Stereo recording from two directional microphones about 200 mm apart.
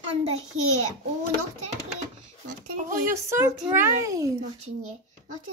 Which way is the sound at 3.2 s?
10° right (ahead or behind).